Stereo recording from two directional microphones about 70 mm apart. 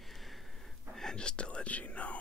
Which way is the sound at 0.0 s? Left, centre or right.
Centre.